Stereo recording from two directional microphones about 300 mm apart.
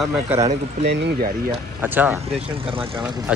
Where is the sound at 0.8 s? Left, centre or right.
Right.